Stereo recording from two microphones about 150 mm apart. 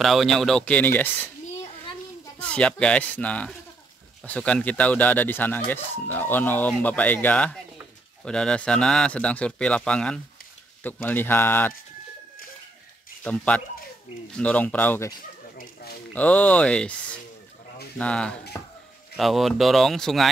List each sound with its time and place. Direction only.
0.0 s speech: centre (ahead or behind)
2.3 s speech: 10° left (ahead or behind)
13.2 s speech: 10° left (ahead or behind)
15.5 s a sound: 80° left
16.2 s speech: 10° left (ahead or behind)